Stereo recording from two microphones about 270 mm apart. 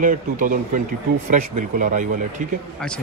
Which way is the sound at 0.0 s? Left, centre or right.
Right.